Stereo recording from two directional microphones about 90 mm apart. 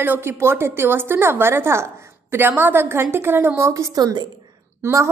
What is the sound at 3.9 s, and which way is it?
Speech, 50° right (ahead or behind).